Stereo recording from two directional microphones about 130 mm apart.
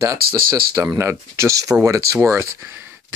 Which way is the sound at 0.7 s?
25° right (ahead or behind).